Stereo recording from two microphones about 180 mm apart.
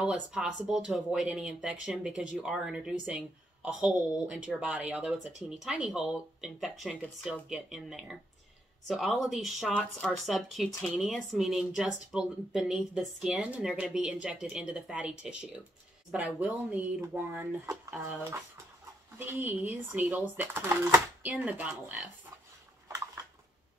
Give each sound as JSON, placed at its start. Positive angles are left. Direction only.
{"t": 0.0, "sound": "speech", "side_deg": -5}
{"t": 19.1, "sound": "speech", "side_deg": -10}
{"t": 22.8, "sound": "a sound", "side_deg": -15}